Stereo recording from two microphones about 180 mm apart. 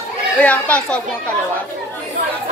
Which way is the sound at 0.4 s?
5° left (ahead or behind).